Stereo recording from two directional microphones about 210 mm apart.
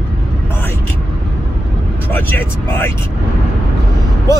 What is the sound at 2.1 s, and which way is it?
Speech, 10° left (ahead or behind).